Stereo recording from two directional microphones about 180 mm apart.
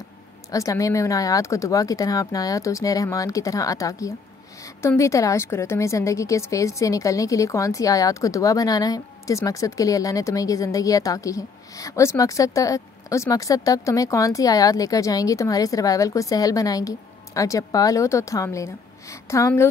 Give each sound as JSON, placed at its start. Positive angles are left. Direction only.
{"t": 0.5, "sound": "a woman's voice", "side_deg": 20}